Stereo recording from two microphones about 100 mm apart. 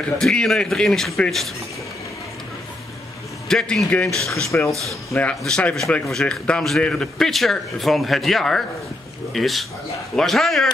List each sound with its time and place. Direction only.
0.2 s a man's voice: 5° left (ahead or behind)
3.4 s a man's voice: 5° left (ahead or behind)
4.3 s speech: 30° left (ahead or behind)
5.4 s a man's voice: 10° left (ahead or behind)